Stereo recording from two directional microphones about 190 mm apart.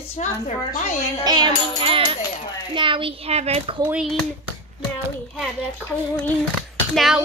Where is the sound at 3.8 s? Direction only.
Centre (ahead or behind).